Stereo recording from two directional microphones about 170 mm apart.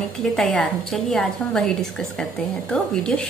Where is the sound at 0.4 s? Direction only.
Centre (ahead or behind).